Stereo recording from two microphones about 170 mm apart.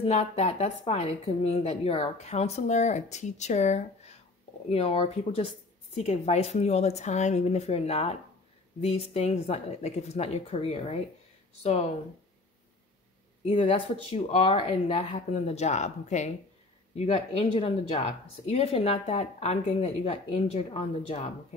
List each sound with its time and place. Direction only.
0.0 s speech: 40° left (ahead or behind)
13.5 s speech: 30° left (ahead or behind)